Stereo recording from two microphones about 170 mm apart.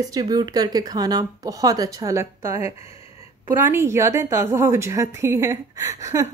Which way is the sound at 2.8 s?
40° left (ahead or behind).